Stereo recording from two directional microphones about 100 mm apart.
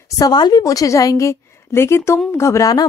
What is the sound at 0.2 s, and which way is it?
Speech, 45° left (ahead or behind).